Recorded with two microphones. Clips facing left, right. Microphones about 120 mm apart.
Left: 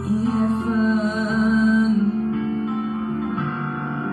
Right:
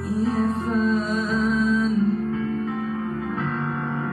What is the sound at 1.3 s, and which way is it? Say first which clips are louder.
Music: left 4 dB; centre (ahead or behind).